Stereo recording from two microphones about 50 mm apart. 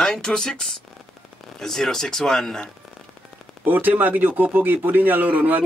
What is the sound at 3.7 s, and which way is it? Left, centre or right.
A man's voice, right.